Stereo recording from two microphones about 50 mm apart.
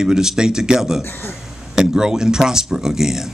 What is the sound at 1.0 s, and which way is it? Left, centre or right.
Speech, left.